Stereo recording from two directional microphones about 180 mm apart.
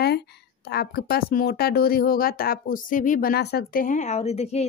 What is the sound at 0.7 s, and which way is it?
Speech, 65° left (ahead or behind).